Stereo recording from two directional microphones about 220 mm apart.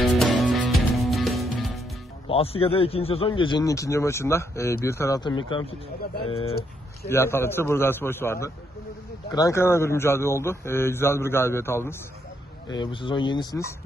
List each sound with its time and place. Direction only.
0.1 s music: centre (ahead or behind)
2.2 s a man's voice: 25° left (ahead or behind)
7.1 s a man's voice: 10° left (ahead or behind)